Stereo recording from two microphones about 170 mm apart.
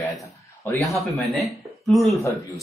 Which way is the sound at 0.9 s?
Centre (ahead or behind).